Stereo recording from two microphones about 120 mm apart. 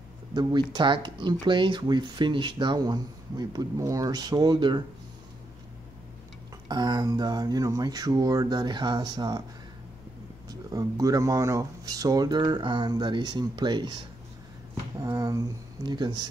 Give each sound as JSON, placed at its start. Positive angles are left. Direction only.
{"t": 0.3, "sound": "speech", "side_deg": -35}
{"t": 6.7, "sound": "speech", "side_deg": -35}
{"t": 10.5, "sound": "speech", "side_deg": -30}